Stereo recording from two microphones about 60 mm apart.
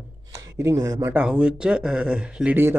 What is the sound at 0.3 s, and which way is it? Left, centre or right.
Speech, right.